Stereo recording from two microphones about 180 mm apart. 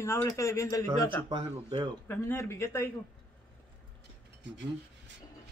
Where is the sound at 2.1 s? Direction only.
15° left (ahead or behind).